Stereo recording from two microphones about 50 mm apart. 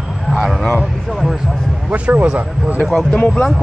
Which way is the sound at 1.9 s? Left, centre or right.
Right.